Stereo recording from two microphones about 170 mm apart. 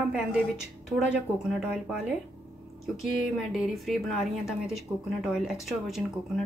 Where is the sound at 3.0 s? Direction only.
Centre (ahead or behind).